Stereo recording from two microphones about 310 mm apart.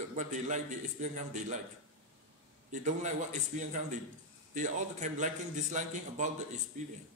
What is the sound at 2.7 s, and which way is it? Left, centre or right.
A man's voice, right.